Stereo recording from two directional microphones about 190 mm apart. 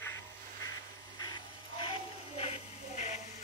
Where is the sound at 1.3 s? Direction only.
25° left (ahead or behind).